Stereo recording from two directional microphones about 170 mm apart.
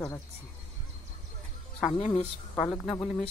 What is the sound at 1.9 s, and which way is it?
Speech, 40° left (ahead or behind).